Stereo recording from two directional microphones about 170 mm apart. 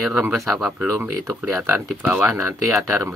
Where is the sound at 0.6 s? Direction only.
10° right (ahead or behind).